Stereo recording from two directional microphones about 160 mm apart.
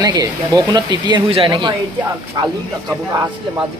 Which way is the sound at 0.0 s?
25° right (ahead or behind).